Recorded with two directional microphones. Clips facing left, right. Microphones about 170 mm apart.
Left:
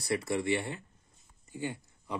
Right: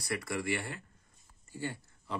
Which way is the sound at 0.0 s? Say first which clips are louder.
Left 5 dB; 25° left (ahead or behind).